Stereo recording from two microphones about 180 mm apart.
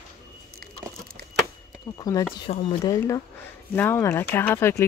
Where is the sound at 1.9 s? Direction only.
20° left (ahead or behind).